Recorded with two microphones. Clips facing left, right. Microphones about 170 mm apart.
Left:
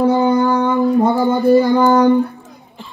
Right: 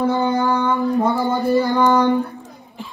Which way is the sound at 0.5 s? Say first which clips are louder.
Left 4 dB; 35° left (ahead or behind).